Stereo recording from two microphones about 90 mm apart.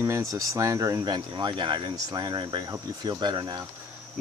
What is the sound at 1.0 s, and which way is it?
Speech, 55° right (ahead or behind).